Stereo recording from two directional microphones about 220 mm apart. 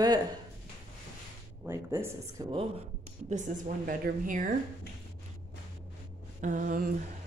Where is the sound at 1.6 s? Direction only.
10° right (ahead or behind).